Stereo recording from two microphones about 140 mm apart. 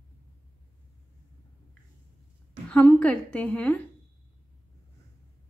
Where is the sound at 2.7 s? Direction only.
10° left (ahead or behind).